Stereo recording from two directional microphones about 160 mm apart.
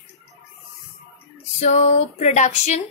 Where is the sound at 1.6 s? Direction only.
45° left (ahead or behind).